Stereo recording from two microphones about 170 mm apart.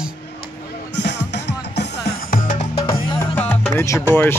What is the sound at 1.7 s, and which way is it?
Music, 70° left (ahead or behind).